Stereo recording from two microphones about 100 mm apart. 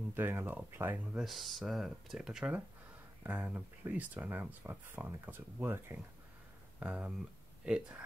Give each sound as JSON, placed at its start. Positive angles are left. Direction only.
{"t": 0.1, "sound": "speech", "side_deg": -20}
{"t": 1.1, "sound": "speech", "side_deg": 0}